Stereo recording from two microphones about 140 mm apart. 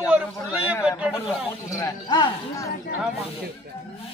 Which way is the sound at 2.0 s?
30° left (ahead or behind).